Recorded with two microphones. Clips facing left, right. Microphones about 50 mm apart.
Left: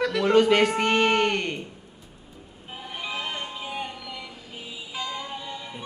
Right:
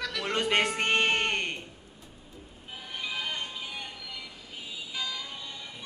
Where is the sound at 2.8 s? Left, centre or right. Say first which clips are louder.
Left 3 dB; centre.